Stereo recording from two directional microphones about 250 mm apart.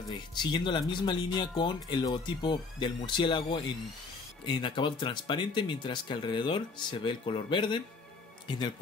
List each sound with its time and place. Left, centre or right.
0.1 s speech: centre